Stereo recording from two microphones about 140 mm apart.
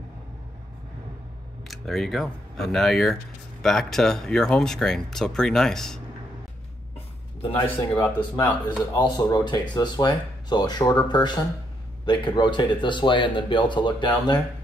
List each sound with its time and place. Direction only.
1.7 s speech: centre (ahead or behind)
7.4 s speech: 40° left (ahead or behind)
7.7 s speech: 15° left (ahead or behind)
8.9 s speech: 25° left (ahead or behind)